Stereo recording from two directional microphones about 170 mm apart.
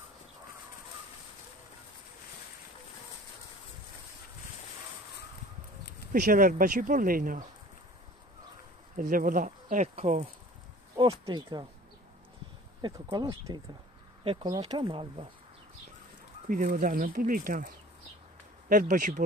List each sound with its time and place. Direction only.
6.1 s speech: 50° right (ahead or behind)
8.9 s speech: 55° right (ahead or behind)
11.0 s speech: 25° right (ahead or behind)
12.8 s speech: 25° right (ahead or behind)
16.4 s speech: 55° right (ahead or behind)